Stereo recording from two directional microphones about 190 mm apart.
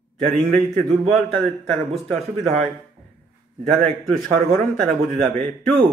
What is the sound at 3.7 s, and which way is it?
A man's voice, centre (ahead or behind).